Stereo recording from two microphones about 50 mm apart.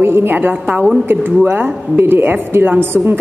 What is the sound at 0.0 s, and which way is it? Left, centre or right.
A woman's voice, right.